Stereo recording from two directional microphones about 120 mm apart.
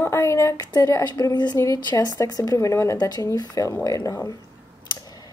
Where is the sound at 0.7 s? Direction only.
30° left (ahead or behind).